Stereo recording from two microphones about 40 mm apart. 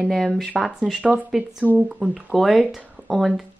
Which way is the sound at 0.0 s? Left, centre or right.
Centre.